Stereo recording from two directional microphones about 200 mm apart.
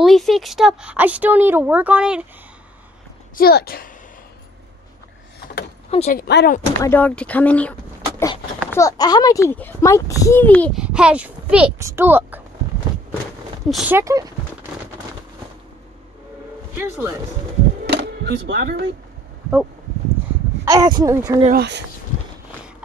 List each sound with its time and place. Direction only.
0.0 s speech: centre (ahead or behind)
3.3 s a woman's voice: 50° left (ahead or behind)
5.9 s speech: 30° left (ahead or behind)
6.1 s a woman's voice: 50° left (ahead or behind)
6.8 s a child's voice: 10° left (ahead or behind)
8.7 s a child's voice: 15° left (ahead or behind)
10.8 s speech: 5° right (ahead or behind)
13.7 s speech: 5° right (ahead or behind)
16.7 s speech: 15° right (ahead or behind)
17.8 s a sound: 55° right (ahead or behind)
20.6 s speech: 20° right (ahead or behind)
21.5 s speech: 55° right (ahead or behind)